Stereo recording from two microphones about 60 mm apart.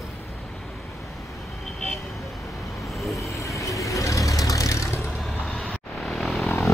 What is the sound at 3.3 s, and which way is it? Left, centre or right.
Vehicle, left.